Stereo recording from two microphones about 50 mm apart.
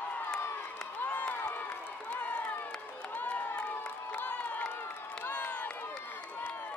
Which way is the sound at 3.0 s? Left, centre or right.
Left.